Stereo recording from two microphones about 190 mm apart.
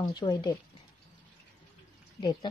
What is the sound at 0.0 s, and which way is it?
Speech, 20° left (ahead or behind).